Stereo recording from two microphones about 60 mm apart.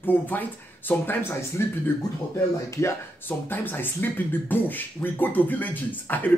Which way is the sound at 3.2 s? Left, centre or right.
Left.